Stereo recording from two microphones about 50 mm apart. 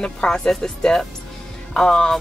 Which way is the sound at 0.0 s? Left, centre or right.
Centre.